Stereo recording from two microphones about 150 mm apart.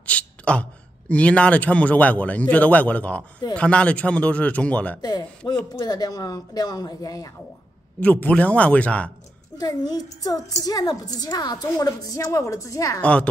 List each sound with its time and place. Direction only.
0.0 s a woman's voice: 10° left (ahead or behind); by 7.2 s 25° left (ahead or behind)
8.0 s speech: 10° left (ahead or behind)
9.6 s a woman's voice: 25° left (ahead or behind)
13.0 s speech: 10° left (ahead or behind)